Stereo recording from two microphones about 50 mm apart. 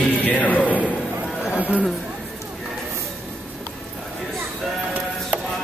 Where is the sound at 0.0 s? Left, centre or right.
Left.